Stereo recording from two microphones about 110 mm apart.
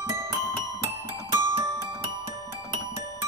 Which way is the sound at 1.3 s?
30° right (ahead or behind).